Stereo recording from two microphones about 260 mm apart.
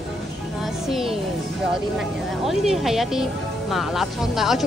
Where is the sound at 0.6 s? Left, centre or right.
Centre.